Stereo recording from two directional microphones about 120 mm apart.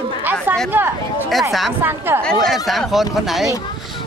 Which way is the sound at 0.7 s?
15° right (ahead or behind).